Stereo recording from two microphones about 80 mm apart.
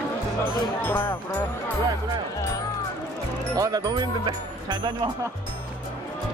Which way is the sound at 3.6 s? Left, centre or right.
Right.